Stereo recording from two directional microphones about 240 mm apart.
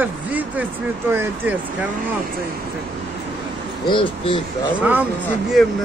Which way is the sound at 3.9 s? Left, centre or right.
Left.